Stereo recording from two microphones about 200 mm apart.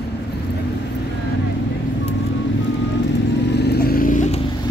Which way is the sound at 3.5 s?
55° left (ahead or behind).